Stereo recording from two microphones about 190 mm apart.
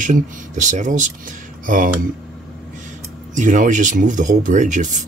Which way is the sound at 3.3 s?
40° right (ahead or behind).